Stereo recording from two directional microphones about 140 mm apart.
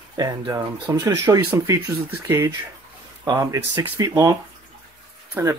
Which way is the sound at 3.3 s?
25° right (ahead or behind).